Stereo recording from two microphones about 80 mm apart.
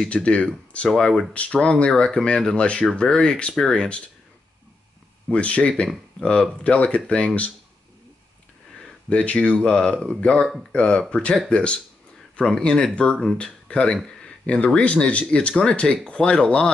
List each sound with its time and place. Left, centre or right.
0.0 s speech: centre
5.3 s speech: centre
9.1 s speech: centre